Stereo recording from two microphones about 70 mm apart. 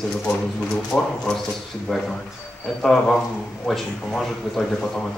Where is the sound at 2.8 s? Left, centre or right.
Centre.